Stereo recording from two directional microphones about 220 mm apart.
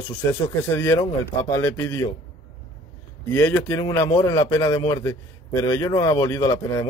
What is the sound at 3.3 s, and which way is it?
Speech, 10° left (ahead or behind).